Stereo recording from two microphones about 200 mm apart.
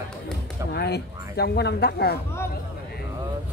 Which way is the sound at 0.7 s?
55° left (ahead or behind).